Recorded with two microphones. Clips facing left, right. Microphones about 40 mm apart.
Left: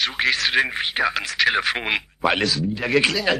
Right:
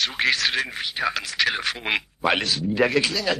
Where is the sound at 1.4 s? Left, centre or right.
Centre.